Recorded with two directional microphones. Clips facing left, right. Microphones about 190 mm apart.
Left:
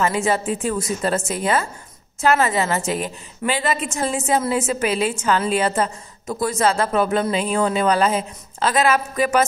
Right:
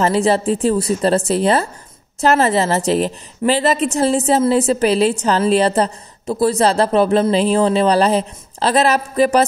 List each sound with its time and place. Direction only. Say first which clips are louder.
0.0 s a woman's voice: right 5 dB; 35° right (ahead or behind)